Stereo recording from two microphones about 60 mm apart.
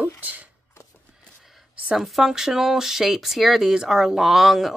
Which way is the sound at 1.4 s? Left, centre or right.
Centre.